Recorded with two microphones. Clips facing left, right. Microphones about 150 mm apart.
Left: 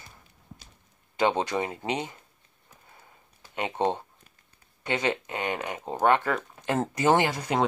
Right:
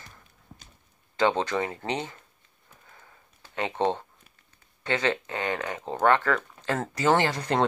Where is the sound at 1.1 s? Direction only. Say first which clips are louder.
Right 1 dB; 15° left (ahead or behind).